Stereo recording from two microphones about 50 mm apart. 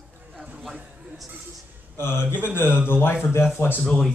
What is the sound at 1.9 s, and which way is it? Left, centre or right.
Speech, left.